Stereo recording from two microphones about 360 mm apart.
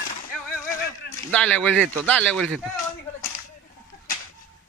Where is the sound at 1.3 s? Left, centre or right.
Centre.